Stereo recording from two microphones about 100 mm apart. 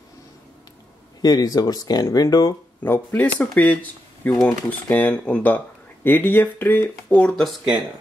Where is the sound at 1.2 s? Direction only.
40° left (ahead or behind).